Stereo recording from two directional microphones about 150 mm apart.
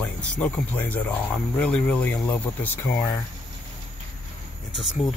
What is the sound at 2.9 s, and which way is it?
Speech, 20° left (ahead or behind).